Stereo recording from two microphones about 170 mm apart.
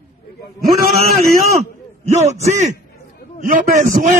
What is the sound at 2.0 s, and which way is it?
A man's voice, 40° right (ahead or behind).